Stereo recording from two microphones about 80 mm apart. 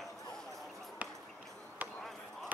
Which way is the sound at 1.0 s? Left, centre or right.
Centre.